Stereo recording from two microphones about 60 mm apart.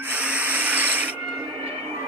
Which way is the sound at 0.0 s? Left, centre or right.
Right.